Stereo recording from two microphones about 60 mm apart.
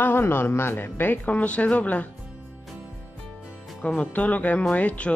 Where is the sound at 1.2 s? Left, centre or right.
Left.